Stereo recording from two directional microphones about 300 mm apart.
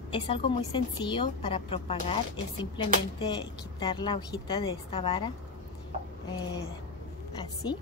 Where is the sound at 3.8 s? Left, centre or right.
Centre.